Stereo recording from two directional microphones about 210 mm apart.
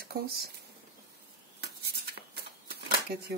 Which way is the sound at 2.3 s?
50° right (ahead or behind).